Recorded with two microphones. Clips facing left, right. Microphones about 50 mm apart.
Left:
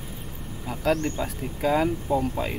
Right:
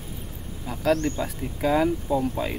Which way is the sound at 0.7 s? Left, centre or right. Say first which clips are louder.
Right 1 dB; centre.